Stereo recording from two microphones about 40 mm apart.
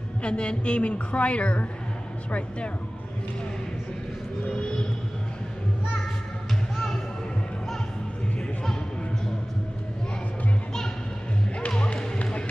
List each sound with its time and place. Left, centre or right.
0.2 s a woman's voice: left
4.5 s music: left
11.7 s music: left